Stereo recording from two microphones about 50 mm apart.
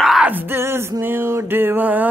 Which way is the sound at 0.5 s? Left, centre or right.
Right.